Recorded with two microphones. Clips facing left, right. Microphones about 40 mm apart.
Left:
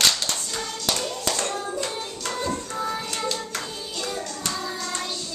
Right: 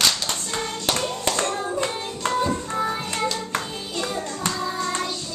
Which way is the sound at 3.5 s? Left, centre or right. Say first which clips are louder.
Right 4 dB; right.